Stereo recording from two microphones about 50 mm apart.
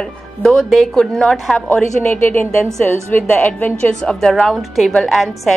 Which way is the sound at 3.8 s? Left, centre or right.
Centre.